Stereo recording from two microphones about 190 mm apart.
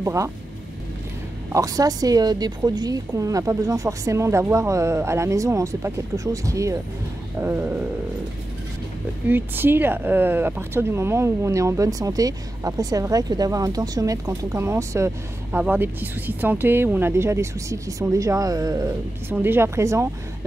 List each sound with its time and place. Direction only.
0.0 s speech: 15° right (ahead or behind)
1.5 s speech: 20° right (ahead or behind)
9.3 s speech: 10° right (ahead or behind)